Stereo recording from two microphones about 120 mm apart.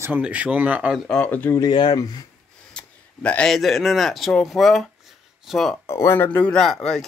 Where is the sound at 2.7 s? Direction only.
10° left (ahead or behind).